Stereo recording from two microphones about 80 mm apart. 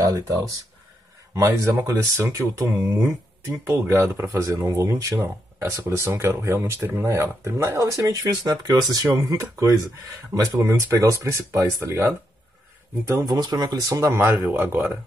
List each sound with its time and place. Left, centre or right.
0.0 s speech: right
1.3 s speech: right
4.3 s speech: right
13.2 s speech: right
13.8 s speech: right